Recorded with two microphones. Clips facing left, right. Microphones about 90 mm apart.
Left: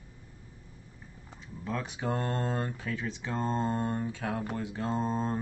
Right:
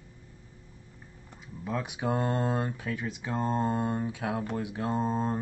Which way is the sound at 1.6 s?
15° right (ahead or behind).